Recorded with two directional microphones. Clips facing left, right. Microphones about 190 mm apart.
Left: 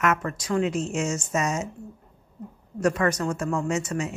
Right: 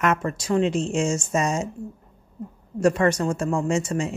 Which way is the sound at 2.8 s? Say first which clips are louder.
Right 3 dB; 30° right (ahead or behind).